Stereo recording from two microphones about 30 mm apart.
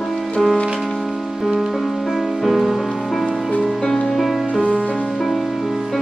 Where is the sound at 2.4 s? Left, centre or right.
Centre.